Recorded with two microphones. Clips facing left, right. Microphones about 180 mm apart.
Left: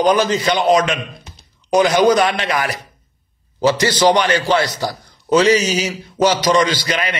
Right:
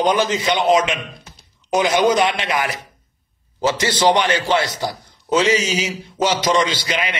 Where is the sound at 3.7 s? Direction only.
25° right (ahead or behind).